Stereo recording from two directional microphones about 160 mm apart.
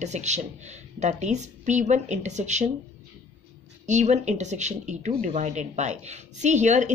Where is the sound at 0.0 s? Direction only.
45° right (ahead or behind).